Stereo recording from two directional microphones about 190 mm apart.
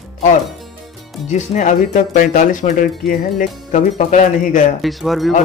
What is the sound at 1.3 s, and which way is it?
Speech, 40° left (ahead or behind).